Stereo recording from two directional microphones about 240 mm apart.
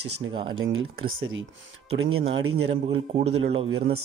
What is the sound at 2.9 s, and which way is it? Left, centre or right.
Speech, right.